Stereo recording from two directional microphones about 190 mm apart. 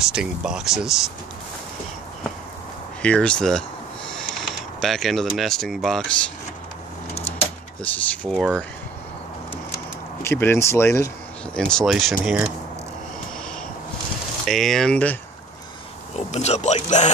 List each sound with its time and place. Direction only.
0.0 s speech: 5° right (ahead or behind)
3.0 s speech: 5° left (ahead or behind)
7.8 s speech: 5° left (ahead or behind)
10.2 s speech: 10° left (ahead or behind)
11.5 s speech: 5° left (ahead or behind)
14.4 s speech: centre (ahead or behind)
16.3 s speech: 35° left (ahead or behind)